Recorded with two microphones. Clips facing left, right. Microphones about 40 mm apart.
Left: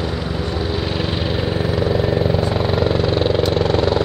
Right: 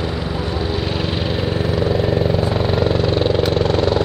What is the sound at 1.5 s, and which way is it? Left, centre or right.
Vehicle, centre.